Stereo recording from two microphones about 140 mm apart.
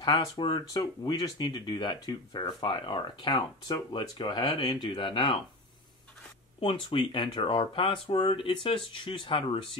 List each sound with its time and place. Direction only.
0.0 s speech: 35° left (ahead or behind)
6.6 s speech: 35° left (ahead or behind)